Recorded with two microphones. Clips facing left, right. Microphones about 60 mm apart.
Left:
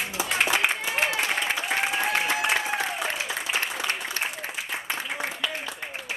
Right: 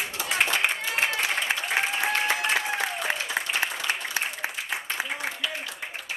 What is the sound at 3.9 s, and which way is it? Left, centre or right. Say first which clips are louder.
Applause: even; centre.